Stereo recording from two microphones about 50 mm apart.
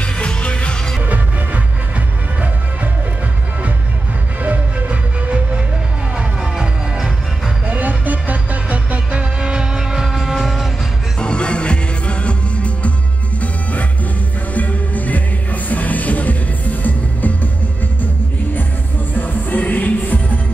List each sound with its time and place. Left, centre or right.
0.0 s music: left
1.0 s music: right
4.4 s music: right
7.7 s music: right; by 10.7 s centre
11.1 s music: centre; by 17.5 s left
19.1 s music: left